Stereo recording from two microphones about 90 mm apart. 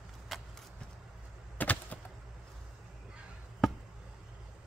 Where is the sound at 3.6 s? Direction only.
Centre (ahead or behind).